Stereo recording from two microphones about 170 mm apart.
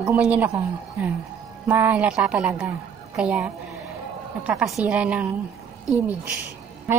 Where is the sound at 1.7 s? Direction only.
10° right (ahead or behind).